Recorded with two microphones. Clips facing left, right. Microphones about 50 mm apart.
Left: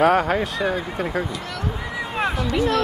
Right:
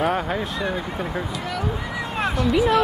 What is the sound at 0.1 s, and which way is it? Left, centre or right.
Speech, left.